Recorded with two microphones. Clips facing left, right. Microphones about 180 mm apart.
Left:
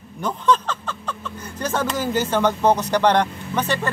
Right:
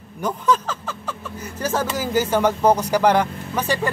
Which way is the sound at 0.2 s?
5° right (ahead or behind).